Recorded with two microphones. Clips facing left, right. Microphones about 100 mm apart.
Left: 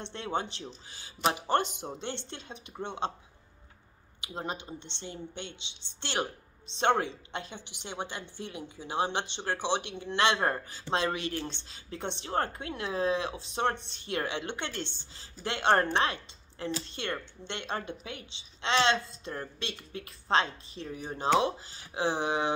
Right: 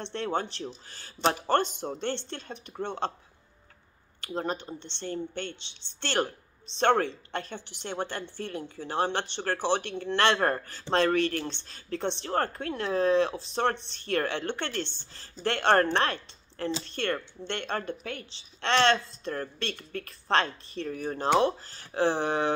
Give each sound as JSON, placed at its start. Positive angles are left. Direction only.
{"t": 0.0, "sound": "a woman's voice", "side_deg": 15}
{"t": 4.4, "sound": "a woman's voice", "side_deg": 15}